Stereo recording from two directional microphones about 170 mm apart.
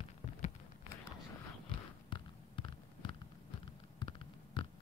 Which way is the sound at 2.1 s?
30° left (ahead or behind).